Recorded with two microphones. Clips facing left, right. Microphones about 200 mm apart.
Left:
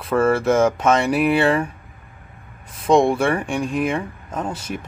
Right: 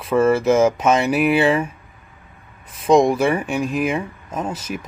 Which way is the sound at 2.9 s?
30° left (ahead or behind).